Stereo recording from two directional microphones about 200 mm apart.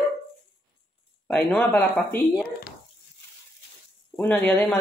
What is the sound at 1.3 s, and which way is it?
Speech, 5° left (ahead or behind).